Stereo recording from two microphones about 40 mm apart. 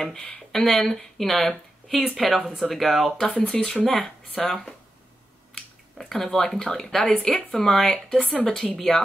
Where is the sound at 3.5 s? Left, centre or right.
Centre.